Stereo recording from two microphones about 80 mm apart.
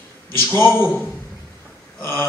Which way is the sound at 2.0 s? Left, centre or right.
Left.